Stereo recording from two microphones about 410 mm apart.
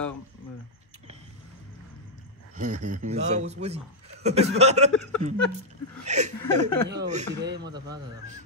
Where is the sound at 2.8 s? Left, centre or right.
Centre.